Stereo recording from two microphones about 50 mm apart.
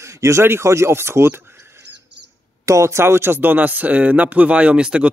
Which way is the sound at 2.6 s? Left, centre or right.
Right.